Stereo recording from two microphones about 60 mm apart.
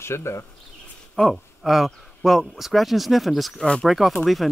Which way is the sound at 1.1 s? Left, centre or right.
Centre.